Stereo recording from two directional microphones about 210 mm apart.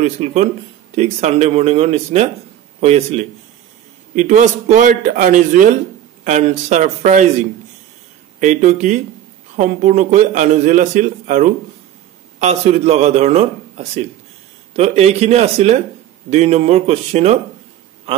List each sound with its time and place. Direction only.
0.0 s a man's voice: 30° right (ahead or behind)
8.4 s a man's voice: 35° right (ahead or behind)